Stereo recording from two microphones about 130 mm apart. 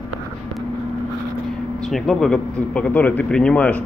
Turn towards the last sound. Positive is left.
turn(degrees=10)  # may be behind; listen again after turning